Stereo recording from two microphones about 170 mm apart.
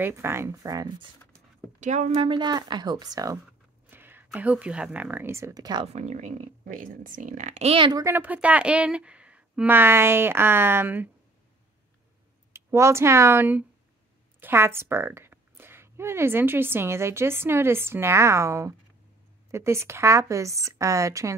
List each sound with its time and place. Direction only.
0.0 s speech: 15° right (ahead or behind)
1.8 s speech: 45° right (ahead or behind); by 5.9 s 25° right (ahead or behind)
5.9 s speech: 45° right (ahead or behind)
8.0 s speech: 10° right (ahead or behind)
12.5 s speech: 15° right (ahead or behind)